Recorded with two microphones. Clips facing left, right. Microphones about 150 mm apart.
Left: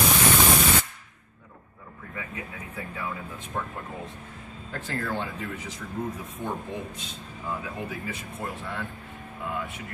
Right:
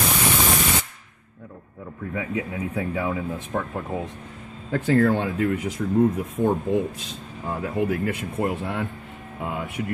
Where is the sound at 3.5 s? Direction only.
60° right (ahead or behind); by 5.6 s 80° right.